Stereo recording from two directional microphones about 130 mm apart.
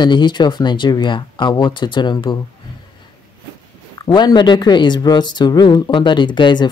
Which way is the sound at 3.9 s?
35° left (ahead or behind).